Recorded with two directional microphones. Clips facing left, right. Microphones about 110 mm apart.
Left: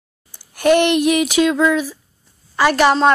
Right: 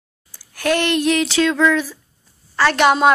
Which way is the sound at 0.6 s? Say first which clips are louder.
Left 5 dB; 15° left (ahead or behind).